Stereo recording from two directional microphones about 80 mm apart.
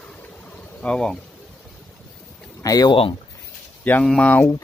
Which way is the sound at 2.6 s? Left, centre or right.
Left.